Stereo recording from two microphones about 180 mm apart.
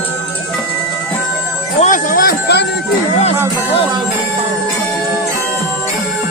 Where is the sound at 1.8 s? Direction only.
50° left (ahead or behind).